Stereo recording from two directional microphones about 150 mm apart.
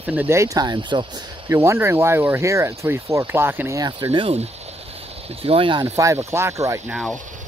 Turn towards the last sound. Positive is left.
turn(degrees=0)  # may be behind; listen again after turning